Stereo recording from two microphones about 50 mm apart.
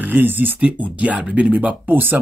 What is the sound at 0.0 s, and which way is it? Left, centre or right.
Speech, right.